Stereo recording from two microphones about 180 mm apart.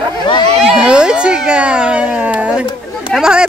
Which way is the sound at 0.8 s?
5° right (ahead or behind).